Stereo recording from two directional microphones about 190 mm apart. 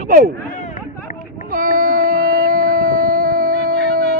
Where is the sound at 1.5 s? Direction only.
45° right (ahead or behind).